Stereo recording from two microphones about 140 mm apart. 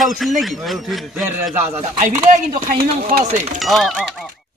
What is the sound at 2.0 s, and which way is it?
Speech, 65° right (ahead or behind).